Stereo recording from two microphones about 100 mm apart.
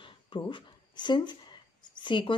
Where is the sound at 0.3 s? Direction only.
50° left (ahead or behind).